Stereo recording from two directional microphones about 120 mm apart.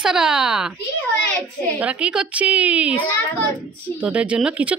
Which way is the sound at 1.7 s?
10° right (ahead or behind).